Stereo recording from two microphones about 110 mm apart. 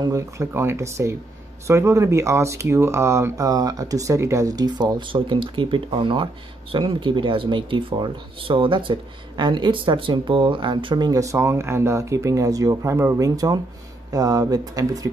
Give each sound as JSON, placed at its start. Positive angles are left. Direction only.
{"t": 0.0, "sound": "speech", "side_deg": -30}
{"t": 11.1, "sound": "speech", "side_deg": -30}